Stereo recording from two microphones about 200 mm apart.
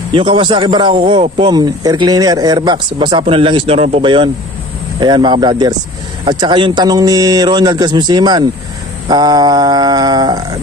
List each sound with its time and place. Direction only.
0.1 s a man's voice: 25° right (ahead or behind)